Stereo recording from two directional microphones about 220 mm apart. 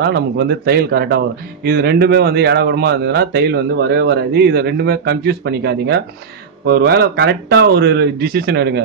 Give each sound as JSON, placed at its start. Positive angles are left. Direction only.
{"t": 0.0, "sound": "speech", "side_deg": -50}